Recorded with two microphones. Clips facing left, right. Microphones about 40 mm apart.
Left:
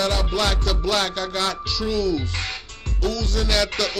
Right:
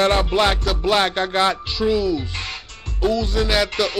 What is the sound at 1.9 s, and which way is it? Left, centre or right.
Music, centre.